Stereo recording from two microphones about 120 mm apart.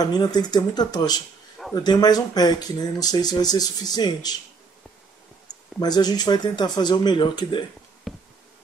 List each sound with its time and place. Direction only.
0.0 s speech: 35° left (ahead or behind)
5.8 s speech: 35° left (ahead or behind)
8.1 s insect: centre (ahead or behind)